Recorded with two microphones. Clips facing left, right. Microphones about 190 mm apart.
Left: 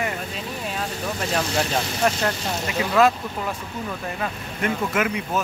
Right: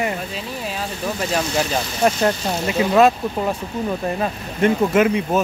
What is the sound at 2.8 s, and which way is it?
Speech, 25° right (ahead or behind).